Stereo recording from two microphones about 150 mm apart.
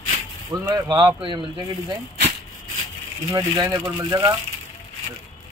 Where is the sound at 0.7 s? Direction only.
25° right (ahead or behind).